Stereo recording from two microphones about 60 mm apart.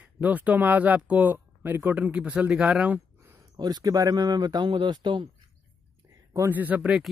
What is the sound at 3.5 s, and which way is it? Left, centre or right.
Speech, right.